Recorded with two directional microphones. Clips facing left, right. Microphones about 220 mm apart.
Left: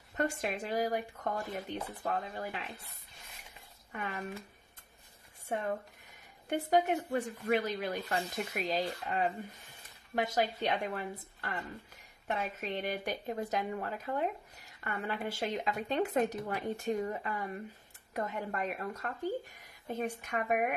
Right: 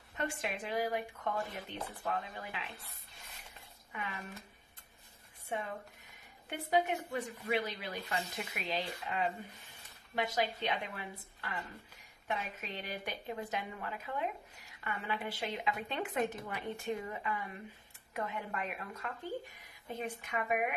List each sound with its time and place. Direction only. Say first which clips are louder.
0.2 s speech: left 5 dB; 45° left (ahead or behind)
3.9 s speech: left 3 dB; 50° left (ahead or behind)
5.5 s speech: left 5 dB; 45° left (ahead or behind)